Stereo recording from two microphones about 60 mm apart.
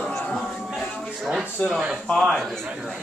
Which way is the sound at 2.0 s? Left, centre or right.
Centre.